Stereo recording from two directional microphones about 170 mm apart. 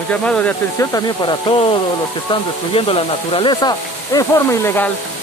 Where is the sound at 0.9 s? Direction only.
25° left (ahead or behind).